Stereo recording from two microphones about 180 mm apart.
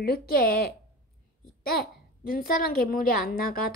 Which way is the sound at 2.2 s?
55° left (ahead or behind).